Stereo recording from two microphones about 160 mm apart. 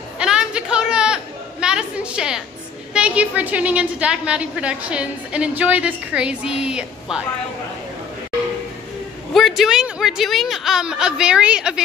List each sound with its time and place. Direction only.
0.2 s chatter: 5° right (ahead or behind)
2.9 s a woman's voice: 10° right (ahead or behind)
9.3 s speech: centre (ahead or behind)